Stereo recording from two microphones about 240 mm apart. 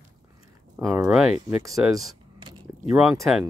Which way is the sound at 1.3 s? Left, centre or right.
Centre.